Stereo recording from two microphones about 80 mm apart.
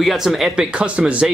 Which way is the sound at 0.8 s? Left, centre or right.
Centre.